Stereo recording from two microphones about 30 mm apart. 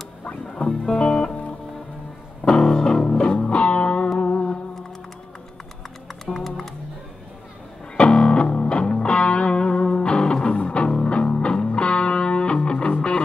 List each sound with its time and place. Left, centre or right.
0.2 s music: left
0.7 s music: left
2.4 s music: left
3.2 s music: left
6.2 s music: centre
8.0 s music: left
12.8 s music: left